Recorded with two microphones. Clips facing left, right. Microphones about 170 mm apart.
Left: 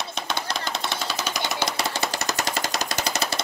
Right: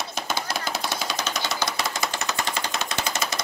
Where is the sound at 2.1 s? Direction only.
40° left (ahead or behind).